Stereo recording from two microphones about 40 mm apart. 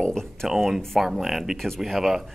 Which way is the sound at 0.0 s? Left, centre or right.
Centre.